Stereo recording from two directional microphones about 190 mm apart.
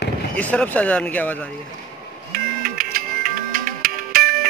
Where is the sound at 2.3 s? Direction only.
50° right (ahead or behind).